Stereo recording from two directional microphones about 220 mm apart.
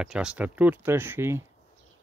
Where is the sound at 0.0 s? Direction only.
5° right (ahead or behind).